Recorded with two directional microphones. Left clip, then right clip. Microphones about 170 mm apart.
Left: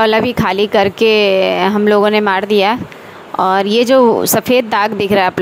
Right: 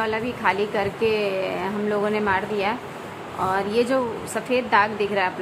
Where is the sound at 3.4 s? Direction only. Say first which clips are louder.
Left 10 dB; 55° left (ahead or behind).